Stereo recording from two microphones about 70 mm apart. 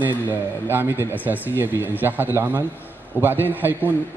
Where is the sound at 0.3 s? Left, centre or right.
Right.